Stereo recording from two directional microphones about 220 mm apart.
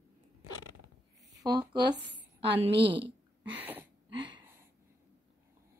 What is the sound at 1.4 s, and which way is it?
Speech, 20° right (ahead or behind).